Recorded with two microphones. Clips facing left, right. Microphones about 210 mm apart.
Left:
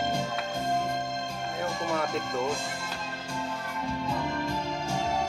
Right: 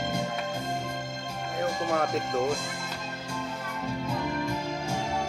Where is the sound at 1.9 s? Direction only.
45° right (ahead or behind).